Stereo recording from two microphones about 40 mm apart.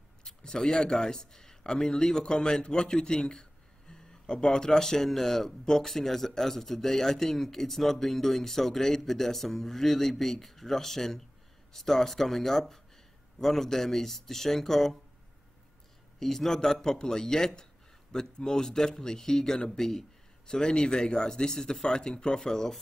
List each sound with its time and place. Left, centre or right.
0.4 s speech: centre
16.2 s speech: centre